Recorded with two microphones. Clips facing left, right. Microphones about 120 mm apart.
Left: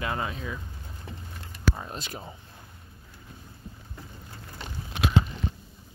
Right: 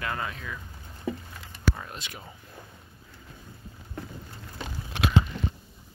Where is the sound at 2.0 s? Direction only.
40° left (ahead or behind).